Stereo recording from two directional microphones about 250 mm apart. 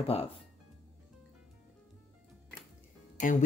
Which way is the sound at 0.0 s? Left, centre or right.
Left.